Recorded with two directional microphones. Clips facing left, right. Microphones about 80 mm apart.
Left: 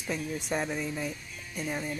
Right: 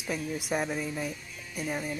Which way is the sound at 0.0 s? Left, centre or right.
Centre.